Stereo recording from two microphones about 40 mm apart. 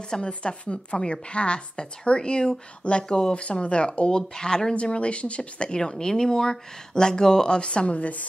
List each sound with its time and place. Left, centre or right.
0.2 s speech: left